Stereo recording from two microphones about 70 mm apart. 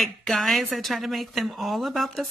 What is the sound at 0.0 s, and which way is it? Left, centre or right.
Speech, centre.